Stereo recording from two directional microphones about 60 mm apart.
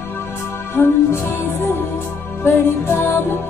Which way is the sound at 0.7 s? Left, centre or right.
Left.